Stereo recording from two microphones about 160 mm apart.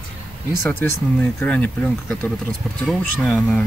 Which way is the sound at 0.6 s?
15° left (ahead or behind).